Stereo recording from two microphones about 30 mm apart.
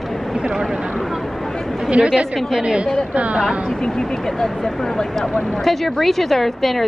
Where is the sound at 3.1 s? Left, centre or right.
Right.